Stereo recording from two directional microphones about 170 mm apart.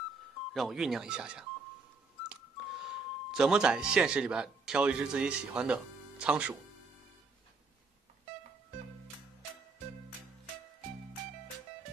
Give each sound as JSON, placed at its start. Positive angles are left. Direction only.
{"t": 0.5, "sound": "speech", "side_deg": 0}
{"t": 2.8, "sound": "a man's voice", "side_deg": -5}